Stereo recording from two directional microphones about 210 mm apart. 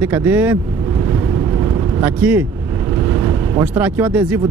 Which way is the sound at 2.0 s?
10° right (ahead or behind).